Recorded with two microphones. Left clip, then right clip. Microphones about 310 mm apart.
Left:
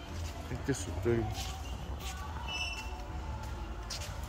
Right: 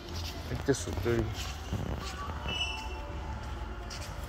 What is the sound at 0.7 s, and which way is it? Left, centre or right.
Speech, centre.